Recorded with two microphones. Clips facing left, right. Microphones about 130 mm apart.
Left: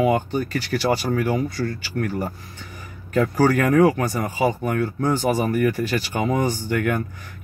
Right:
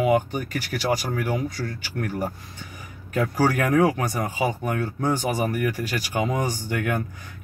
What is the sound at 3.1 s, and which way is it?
Speech, 10° right (ahead or behind).